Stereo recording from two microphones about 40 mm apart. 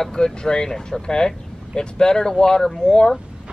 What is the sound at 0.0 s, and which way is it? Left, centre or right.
Speech, centre.